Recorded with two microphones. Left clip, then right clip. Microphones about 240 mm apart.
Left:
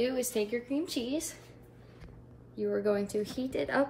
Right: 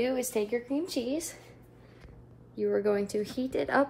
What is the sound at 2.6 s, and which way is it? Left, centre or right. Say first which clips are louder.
Speech: right 3 dB; right.